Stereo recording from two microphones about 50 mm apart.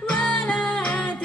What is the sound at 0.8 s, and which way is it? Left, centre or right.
Music, left.